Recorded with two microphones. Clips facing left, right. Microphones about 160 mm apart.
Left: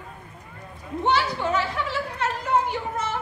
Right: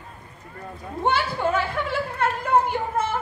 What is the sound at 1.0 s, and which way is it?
Speech, 50° right (ahead or behind).